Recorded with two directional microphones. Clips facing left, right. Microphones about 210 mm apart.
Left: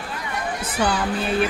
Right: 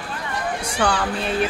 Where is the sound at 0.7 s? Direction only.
5° left (ahead or behind).